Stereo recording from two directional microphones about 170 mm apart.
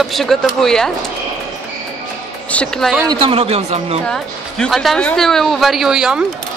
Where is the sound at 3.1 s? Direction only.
30° right (ahead or behind).